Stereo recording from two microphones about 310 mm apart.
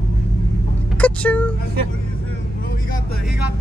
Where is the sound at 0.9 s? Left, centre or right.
Centre.